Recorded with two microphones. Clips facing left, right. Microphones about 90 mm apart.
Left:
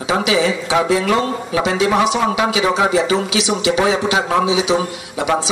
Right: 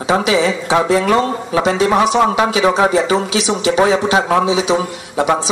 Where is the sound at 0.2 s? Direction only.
40° right (ahead or behind).